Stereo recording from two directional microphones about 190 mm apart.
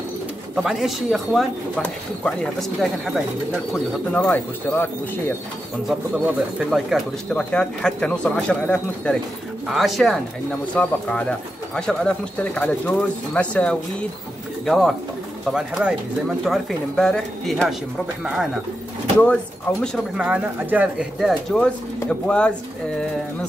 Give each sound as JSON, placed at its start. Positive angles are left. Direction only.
{"t": 0.6, "sound": "speech", "side_deg": 0}
{"t": 5.9, "sound": "speech", "side_deg": 0}
{"t": 19.8, "sound": "speech", "side_deg": -5}